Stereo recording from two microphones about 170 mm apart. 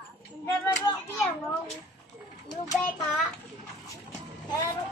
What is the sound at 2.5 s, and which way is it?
Child singing, 20° left (ahead or behind).